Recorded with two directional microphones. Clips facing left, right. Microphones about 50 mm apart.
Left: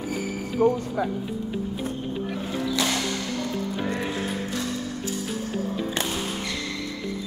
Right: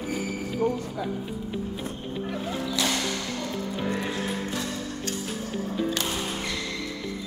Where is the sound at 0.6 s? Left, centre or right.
Left.